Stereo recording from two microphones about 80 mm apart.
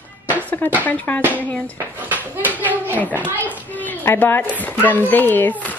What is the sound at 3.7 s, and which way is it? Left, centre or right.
Speech, left.